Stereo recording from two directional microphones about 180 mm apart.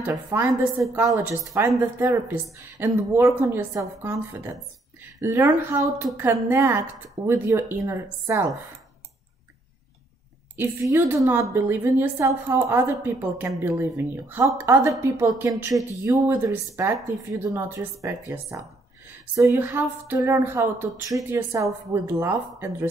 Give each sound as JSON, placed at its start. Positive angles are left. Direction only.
{"t": 0.0, "sound": "a woman's voice", "side_deg": -15}
{"t": 10.5, "sound": "a woman's voice", "side_deg": -10}